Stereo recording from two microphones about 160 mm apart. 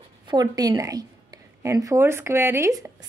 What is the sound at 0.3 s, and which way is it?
A woman's voice, 25° right (ahead or behind).